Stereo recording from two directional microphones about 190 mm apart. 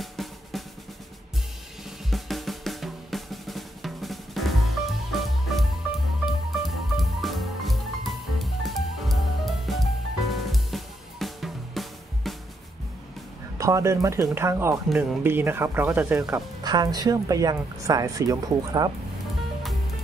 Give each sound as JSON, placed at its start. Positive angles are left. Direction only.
{"t": 0.0, "sound": "drum", "side_deg": 0}
{"t": 2.0, "sound": "drum", "side_deg": 0}
{"t": 6.2, "sound": "music", "side_deg": 0}
{"t": 13.6, "sound": "speech", "side_deg": -15}
{"t": 14.9, "sound": "speech", "side_deg": 0}
{"t": 16.6, "sound": "speech", "side_deg": -20}